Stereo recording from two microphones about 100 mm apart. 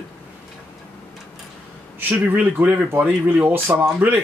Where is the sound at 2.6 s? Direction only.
15° right (ahead or behind).